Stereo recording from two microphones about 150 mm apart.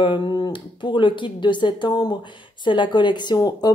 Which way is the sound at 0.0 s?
30° left (ahead or behind).